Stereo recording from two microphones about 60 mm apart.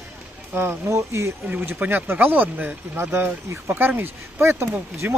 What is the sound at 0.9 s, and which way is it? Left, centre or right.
Speech, right.